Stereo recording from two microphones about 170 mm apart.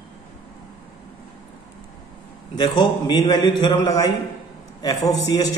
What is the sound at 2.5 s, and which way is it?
A man's voice, 25° left (ahead or behind).